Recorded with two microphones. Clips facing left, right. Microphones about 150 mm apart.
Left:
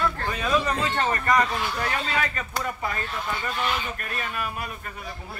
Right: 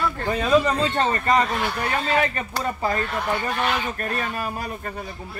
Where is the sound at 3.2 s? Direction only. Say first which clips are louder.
Right 2 dB; 65° right (ahead or behind).